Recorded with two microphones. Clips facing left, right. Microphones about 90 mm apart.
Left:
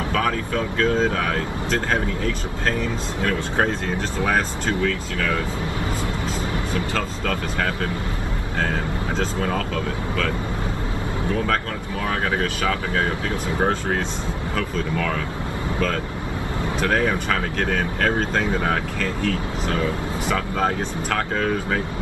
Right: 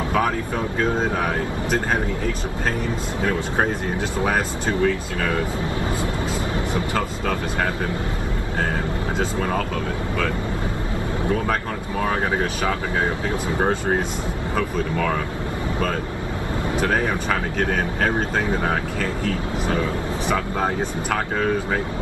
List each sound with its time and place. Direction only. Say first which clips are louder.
0.1 s speech: right 1 dB; 20° right (ahead or behind)
4.2 s speech: left 1 dB; 15° right (ahead or behind)
6.7 s speech: right 1 dB; 15° right (ahead or behind)
12.0 s speech: right 1 dB; 20° right (ahead or behind)
14.6 s speech: right 2 dB; 15° right (ahead or behind)
16.8 s speech: left 2 dB; 15° right (ahead or behind)
20.2 s speech: left 1 dB; 10° right (ahead or behind)